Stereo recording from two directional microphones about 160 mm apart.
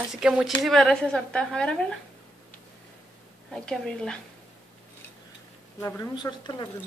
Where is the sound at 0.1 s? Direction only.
5° right (ahead or behind).